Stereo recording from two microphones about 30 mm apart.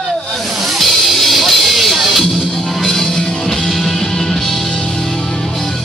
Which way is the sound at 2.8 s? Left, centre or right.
Centre.